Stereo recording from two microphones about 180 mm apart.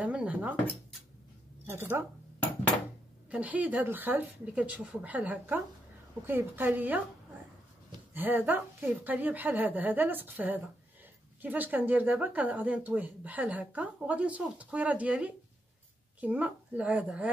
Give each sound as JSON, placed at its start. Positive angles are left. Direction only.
{"t": 0.0, "sound": "dishes", "side_deg": -5}
{"t": 1.7, "sound": "speech", "side_deg": -15}
{"t": 8.1, "sound": "speech", "side_deg": -10}